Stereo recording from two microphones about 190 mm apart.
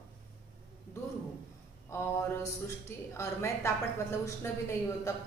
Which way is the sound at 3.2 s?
15° left (ahead or behind).